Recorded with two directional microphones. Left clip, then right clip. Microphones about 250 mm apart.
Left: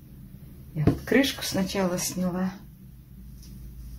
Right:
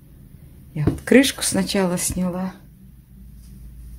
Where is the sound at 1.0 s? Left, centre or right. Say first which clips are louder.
Right 9 dB; right.